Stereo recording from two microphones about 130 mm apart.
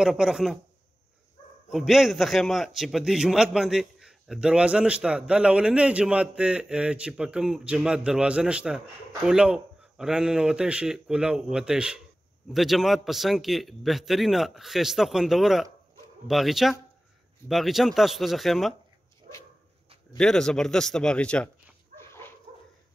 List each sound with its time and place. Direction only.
0.0 s a man's voice: 5° right (ahead or behind)
1.7 s a man's voice: centre (ahead or behind)
19.3 s dog: 90° right
20.2 s a man's voice: 5° left (ahead or behind)